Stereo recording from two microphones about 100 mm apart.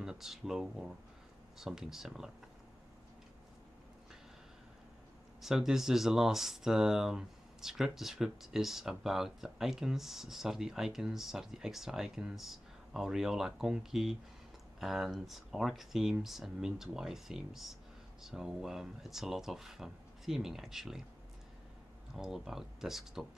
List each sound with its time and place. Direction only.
0.0 s speech: 5° right (ahead or behind)
5.4 s speech: 5° right (ahead or behind)
22.1 s speech: 5° right (ahead or behind)